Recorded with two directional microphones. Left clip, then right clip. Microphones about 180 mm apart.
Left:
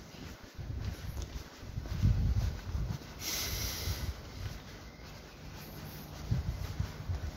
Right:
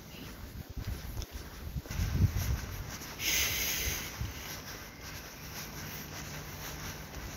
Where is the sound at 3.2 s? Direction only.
30° left (ahead or behind).